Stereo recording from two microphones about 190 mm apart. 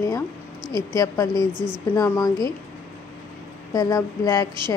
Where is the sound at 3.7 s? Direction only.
20° left (ahead or behind).